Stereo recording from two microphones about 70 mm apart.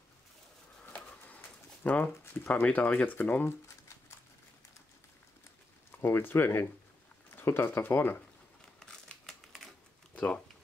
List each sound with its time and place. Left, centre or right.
0.8 s a sound: left
5.9 s speech: left
8.7 s typewriter: centre
10.1 s speech: centre